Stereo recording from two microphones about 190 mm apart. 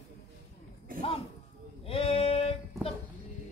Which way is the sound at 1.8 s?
30° left (ahead or behind).